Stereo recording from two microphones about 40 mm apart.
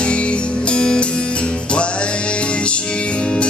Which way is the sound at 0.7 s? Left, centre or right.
Left.